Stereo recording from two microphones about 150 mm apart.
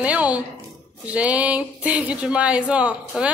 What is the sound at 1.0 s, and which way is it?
A woman's voice, 10° right (ahead or behind).